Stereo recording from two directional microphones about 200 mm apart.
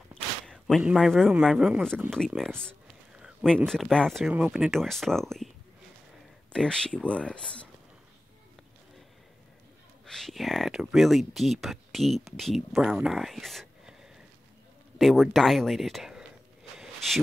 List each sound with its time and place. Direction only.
0.5 s speech: centre (ahead or behind)
6.5 s speech: 5° left (ahead or behind)
10.0 s speech: centre (ahead or behind)
15.0 s speech: centre (ahead or behind)
16.7 s a sound: centre (ahead or behind)